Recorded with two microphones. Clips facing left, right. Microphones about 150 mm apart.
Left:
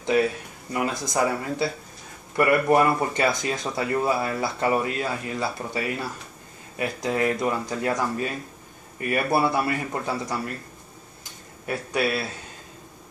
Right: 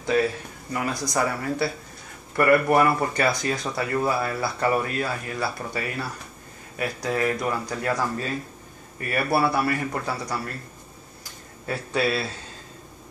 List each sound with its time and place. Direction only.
0.0 s speech: 20° left (ahead or behind)
11.6 s speech: 15° left (ahead or behind)